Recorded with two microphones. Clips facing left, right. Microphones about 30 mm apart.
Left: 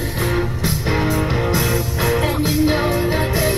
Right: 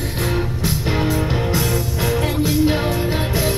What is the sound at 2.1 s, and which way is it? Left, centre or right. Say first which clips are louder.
Music: left 1 dB; left.